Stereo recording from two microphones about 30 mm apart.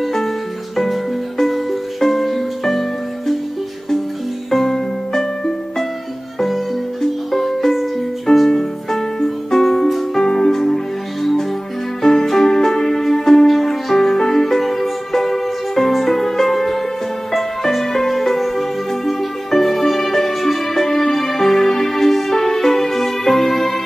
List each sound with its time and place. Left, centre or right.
0.0 s music: centre
1.4 s music: centre
4.6 s music: centre
6.4 s music: centre
10.2 s music: centre
12.0 s music: centre